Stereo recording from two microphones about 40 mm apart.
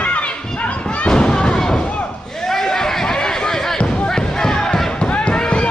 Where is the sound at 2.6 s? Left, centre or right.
Centre.